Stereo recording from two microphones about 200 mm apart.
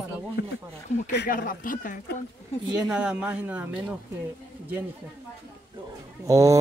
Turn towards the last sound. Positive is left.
turn(degrees=-15)  # may be behind; listen again after turning